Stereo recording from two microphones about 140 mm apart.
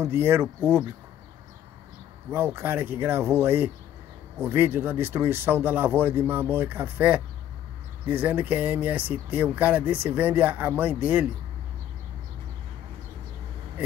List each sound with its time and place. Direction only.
0.0 s speech: 15° right (ahead or behind)
2.3 s speech: 15° right (ahead or behind)